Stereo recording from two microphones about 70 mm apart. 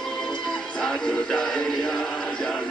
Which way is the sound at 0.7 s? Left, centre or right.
Centre.